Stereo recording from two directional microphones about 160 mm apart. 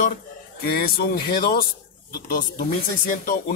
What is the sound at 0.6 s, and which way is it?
A man's voice, 70° left (ahead or behind).